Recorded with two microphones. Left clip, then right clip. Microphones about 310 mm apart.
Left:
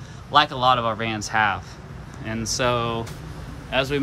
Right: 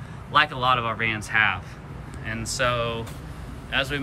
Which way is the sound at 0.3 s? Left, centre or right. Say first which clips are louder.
Left 3 dB; centre.